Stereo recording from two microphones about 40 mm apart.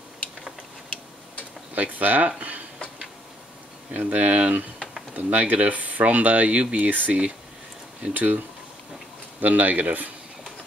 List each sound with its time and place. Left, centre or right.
1.8 s speech: right
3.9 s speech: right
9.4 s speech: right